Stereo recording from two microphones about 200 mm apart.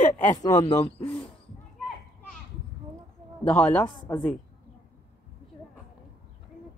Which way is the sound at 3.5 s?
5° left (ahead or behind).